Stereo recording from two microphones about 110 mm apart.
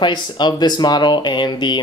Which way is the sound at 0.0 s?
45° left (ahead or behind).